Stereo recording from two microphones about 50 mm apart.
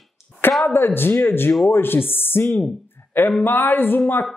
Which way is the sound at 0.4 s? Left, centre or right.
Left.